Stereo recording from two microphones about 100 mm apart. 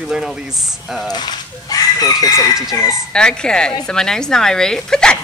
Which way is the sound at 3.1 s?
10° left (ahead or behind).